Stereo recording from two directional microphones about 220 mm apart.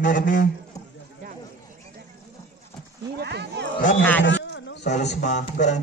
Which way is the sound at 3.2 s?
50° right (ahead or behind).